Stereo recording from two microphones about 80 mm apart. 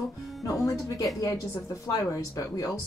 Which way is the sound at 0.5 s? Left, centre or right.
Left.